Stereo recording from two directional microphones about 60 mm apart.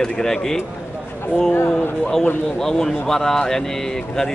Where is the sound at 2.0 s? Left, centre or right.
Centre.